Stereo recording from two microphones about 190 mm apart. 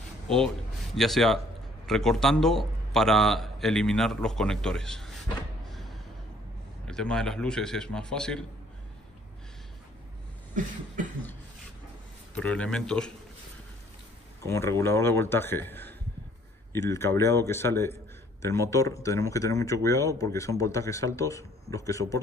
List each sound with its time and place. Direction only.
0.9 s a man's voice: centre (ahead or behind)
6.9 s a man's voice: 5° left (ahead or behind)
10.6 s cough: 45° right (ahead or behind)
11.0 s a sound: 45° right (ahead or behind)
12.4 s a man's voice: 5° left (ahead or behind)
14.4 s speech: 15° left (ahead or behind)